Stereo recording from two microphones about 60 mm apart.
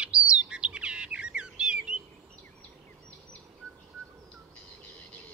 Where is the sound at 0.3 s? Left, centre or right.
Centre.